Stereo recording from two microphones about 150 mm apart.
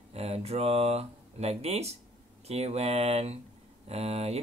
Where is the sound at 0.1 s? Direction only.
45° right (ahead or behind).